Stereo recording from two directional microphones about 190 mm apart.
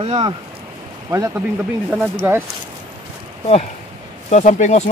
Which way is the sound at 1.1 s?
15° right (ahead or behind).